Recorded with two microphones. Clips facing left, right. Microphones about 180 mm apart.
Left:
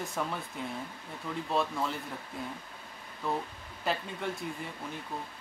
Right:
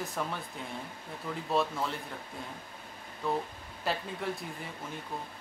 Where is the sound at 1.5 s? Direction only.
Centre (ahead or behind).